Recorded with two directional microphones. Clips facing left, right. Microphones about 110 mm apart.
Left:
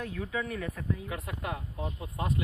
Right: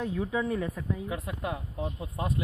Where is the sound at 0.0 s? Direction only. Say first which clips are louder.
Right 5 dB; 20° right (ahead or behind).